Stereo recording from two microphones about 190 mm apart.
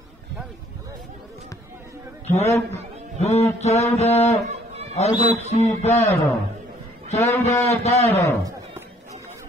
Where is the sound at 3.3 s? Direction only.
35° left (ahead or behind).